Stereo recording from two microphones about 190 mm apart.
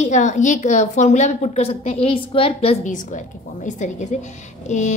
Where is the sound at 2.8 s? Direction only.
40° left (ahead or behind).